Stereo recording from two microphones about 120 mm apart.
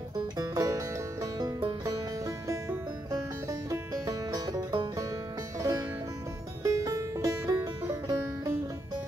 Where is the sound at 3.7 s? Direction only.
30° right (ahead or behind).